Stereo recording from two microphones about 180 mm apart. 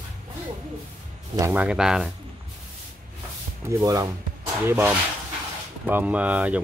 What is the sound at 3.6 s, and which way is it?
Speech, 20° right (ahead or behind).